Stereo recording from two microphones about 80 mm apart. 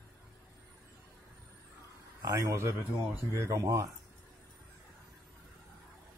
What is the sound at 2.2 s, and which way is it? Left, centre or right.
Speech, right.